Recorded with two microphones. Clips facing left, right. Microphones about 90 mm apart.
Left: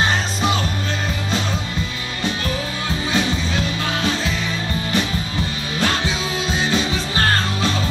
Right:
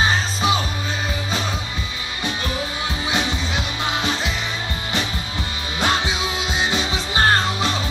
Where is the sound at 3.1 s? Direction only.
15° right (ahead or behind).